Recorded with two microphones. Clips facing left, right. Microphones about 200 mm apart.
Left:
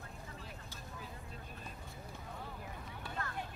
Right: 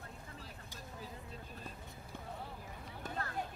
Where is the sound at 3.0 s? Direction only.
40° right (ahead or behind).